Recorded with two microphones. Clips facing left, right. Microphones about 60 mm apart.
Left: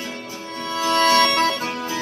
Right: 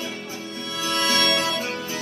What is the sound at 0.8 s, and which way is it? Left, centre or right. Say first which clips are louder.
Music: left 7 dB; left.